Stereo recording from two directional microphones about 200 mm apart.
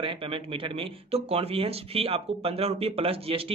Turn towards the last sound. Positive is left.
turn(degrees=-30)  # may be behind; listen again after turning